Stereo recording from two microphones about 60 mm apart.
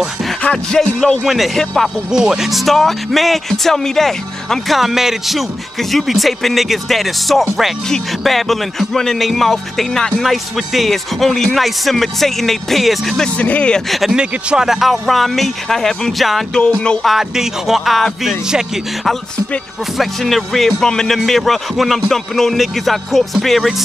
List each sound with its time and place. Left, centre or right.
0.4 s music: centre
0.7 s speech: centre
2.0 s speech: centre
10.2 s speech: centre
13.4 s speech: left
13.8 s speech: centre
14.1 s speech: centre
16.7 s speech: centre
17.0 s speech: centre
20.0 s speech: centre